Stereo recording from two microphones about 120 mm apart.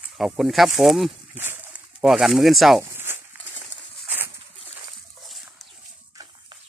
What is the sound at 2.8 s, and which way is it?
Zipper, 20° right (ahead or behind).